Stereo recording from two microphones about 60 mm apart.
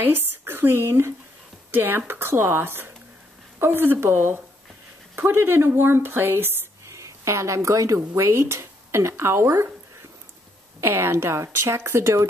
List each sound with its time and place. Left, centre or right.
0.0 s speech: right
6.9 s speech: right
10.8 s speech: right